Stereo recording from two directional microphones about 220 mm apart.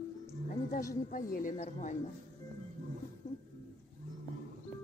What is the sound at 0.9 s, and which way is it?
A woman's voice, 40° left (ahead or behind).